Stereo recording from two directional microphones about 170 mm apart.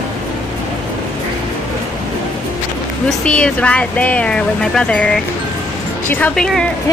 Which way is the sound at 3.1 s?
5° left (ahead or behind).